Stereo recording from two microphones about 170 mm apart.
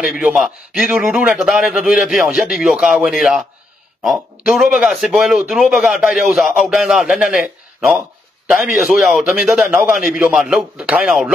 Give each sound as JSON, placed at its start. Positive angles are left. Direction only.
{"t": 0.0, "sound": "a man's voice", "side_deg": -5}